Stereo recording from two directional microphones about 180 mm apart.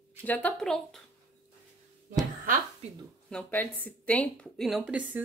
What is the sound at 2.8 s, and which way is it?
Speech, 35° right (ahead or behind).